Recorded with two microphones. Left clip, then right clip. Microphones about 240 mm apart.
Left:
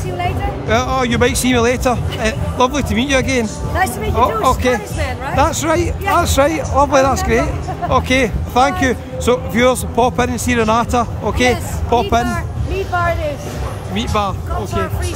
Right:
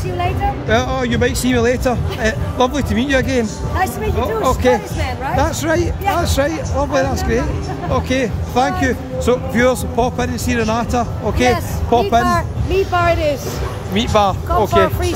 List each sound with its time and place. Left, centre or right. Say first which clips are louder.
0.2 s speech: right 2 dB; centre
12.9 s speech: right 1 dB; right
13.9 s speech: right 4 dB; centre